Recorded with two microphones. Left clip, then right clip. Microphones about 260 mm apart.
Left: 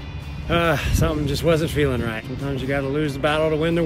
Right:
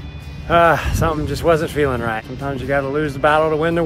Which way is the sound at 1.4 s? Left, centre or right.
Centre.